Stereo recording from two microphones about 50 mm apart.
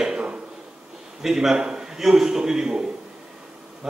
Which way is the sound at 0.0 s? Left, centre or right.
Centre.